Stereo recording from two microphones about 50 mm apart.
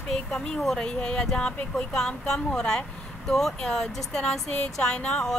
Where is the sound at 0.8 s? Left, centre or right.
Centre.